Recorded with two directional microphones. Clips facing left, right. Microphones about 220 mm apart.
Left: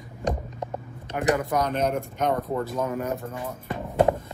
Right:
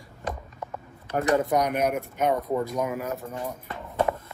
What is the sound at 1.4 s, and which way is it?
Speech, 15° right (ahead or behind).